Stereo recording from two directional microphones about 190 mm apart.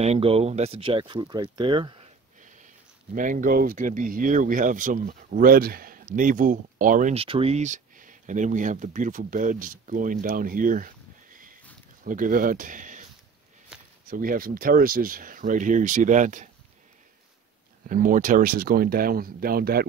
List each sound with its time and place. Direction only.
0.0 s speech: 35° right (ahead or behind)
2.4 s a sound: 40° right (ahead or behind)
3.2 s speech: 45° right (ahead or behind)
7.2 s speech: 30° right (ahead or behind)
14.0 s speech: 45° right (ahead or behind)
17.8 s speech: 45° right (ahead or behind)